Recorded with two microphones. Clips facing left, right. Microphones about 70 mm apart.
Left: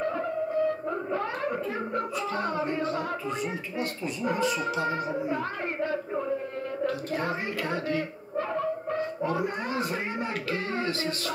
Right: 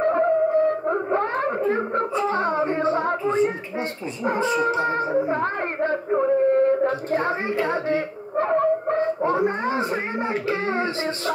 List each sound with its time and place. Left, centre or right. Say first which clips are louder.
0.0 s wail: right 10 dB; right
4.2 s speech: right 6 dB; right
10.5 s music: right 4 dB; right